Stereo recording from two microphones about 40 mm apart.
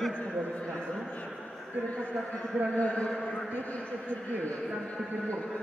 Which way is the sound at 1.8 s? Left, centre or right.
Left.